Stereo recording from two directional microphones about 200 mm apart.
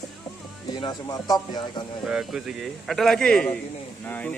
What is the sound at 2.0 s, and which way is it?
Speech, 5° right (ahead or behind).